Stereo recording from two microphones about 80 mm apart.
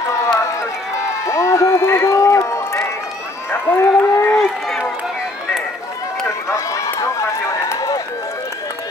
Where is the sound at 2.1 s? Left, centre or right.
Left.